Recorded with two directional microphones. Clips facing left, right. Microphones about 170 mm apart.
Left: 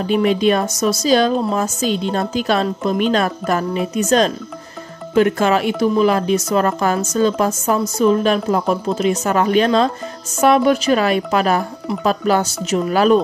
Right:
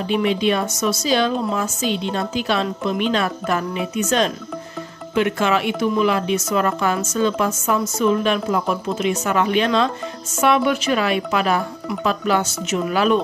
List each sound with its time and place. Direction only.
0.0 s a woman's voice: 40° left (ahead or behind)